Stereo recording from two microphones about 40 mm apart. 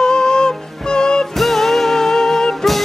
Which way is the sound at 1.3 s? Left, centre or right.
Centre.